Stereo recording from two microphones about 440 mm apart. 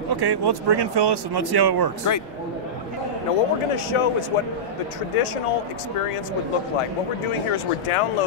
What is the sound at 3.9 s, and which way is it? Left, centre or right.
Speech, left.